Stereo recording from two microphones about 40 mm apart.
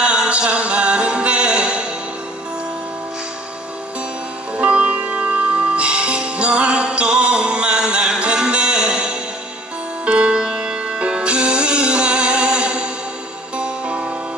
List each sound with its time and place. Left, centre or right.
0.0 s a capella: right
4.6 s music: right